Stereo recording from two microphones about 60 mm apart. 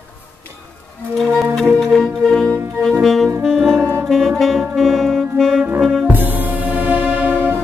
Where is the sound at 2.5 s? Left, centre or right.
Right.